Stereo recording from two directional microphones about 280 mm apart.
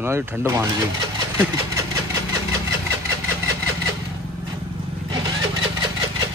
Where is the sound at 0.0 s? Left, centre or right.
Centre.